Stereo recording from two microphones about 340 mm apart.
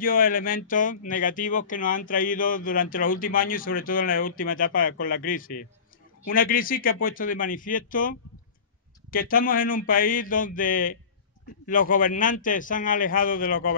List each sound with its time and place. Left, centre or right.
0.0 s speech: left